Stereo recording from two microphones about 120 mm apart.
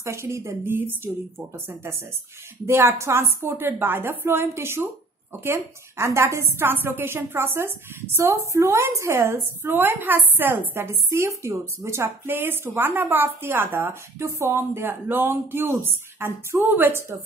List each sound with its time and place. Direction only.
0.0 s a woman's voice: 25° right (ahead or behind)
2.6 s a woman's voice: 20° right (ahead or behind)